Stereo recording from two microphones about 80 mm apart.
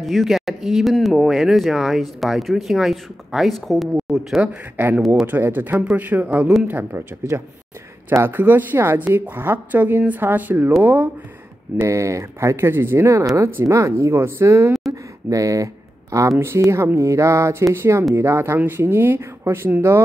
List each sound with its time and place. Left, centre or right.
0.0 s speech: centre
4.7 s speech: right
8.1 s speech: right
11.8 s speech: right
14.9 s a sound: right
16.3 s speech: right